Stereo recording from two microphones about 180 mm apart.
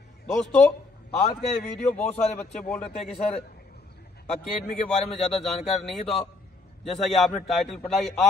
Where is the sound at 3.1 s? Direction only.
35° left (ahead or behind).